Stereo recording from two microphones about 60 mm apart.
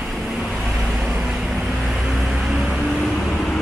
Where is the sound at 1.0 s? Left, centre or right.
Centre.